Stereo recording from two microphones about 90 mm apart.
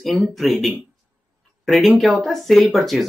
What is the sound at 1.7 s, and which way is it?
Speech, centre (ahead or behind).